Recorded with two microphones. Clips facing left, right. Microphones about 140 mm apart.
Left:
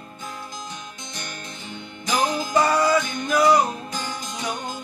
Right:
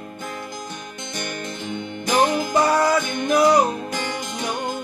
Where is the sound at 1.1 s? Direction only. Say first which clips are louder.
Right 9 dB; 60° right (ahead or behind).